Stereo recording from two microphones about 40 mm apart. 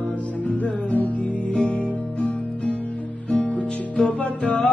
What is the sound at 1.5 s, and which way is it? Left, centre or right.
Music, left.